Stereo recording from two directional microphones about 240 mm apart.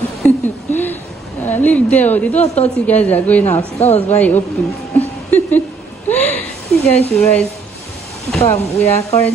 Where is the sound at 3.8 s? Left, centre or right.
Left.